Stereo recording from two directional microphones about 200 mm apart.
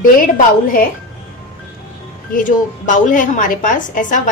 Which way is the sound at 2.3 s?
40° left (ahead or behind).